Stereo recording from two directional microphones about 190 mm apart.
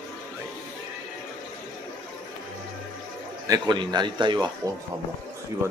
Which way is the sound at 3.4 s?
20° right (ahead or behind).